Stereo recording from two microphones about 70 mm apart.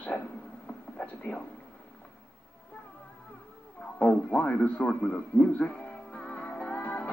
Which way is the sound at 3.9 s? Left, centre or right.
Centre.